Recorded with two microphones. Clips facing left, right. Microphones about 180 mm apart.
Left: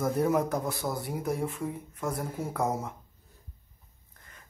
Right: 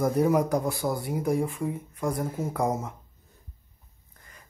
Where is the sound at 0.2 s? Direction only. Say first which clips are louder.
Right 3 dB; centre (ahead or behind).